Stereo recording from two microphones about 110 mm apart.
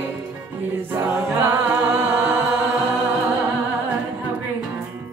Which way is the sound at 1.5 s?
15° right (ahead or behind).